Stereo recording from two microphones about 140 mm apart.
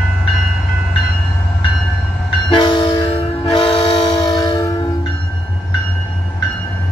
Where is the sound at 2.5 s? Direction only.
35° left (ahead or behind).